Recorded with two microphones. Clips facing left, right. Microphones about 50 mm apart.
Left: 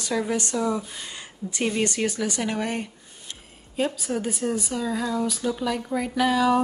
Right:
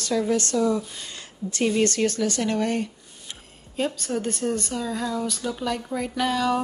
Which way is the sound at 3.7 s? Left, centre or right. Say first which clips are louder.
Even; centre.